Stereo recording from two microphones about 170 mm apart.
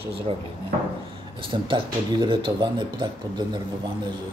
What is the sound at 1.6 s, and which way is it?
Speech, 30° right (ahead or behind).